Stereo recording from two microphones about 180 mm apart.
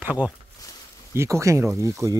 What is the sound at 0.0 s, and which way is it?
Speech, 10° right (ahead or behind).